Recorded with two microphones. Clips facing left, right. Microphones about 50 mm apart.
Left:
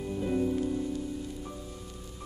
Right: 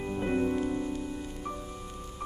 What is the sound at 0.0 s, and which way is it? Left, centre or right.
Music, right.